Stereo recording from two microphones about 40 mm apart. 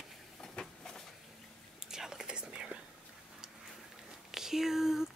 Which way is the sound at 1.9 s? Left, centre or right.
Centre.